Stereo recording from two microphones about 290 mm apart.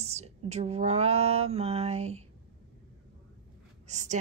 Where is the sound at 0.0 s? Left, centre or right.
Right.